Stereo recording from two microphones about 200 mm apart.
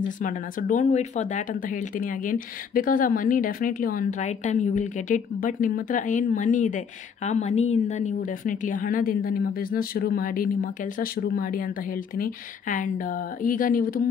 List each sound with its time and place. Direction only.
0.2 s a woman's voice: 40° left (ahead or behind)